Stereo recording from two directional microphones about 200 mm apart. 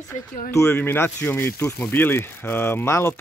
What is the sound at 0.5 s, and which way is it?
Speech, 15° left (ahead or behind).